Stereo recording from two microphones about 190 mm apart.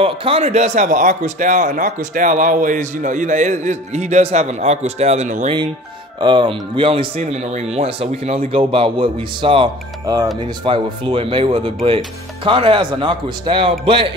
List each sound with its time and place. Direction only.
0.0 s speech: 30° right (ahead or behind)
6.2 s speech: 25° right (ahead or behind)